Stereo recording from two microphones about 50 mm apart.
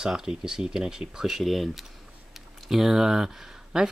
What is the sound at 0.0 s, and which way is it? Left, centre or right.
Speech, centre.